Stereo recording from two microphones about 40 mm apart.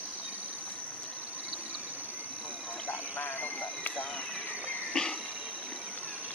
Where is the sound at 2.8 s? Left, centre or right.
Left.